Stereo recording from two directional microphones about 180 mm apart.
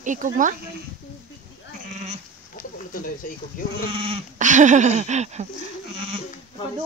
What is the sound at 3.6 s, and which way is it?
Speech, 45° left (ahead or behind).